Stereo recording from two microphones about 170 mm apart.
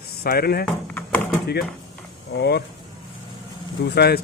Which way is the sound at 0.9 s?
10° left (ahead or behind).